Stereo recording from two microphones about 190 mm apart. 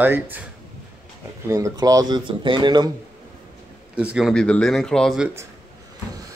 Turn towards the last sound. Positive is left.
turn(degrees=0)  # may be behind; listen again after turning